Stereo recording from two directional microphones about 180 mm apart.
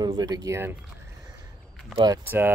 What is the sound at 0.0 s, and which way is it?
Speech, 20° right (ahead or behind).